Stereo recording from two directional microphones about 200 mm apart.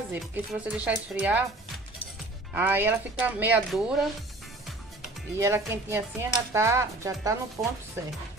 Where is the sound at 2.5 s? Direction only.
10° right (ahead or behind).